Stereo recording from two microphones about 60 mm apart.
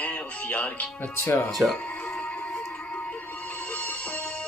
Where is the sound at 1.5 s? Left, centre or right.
Centre.